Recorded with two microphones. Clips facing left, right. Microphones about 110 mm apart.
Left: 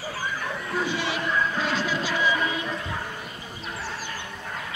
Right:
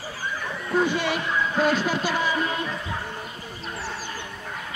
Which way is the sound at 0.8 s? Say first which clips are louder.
Right 3 dB; 55° right (ahead or behind).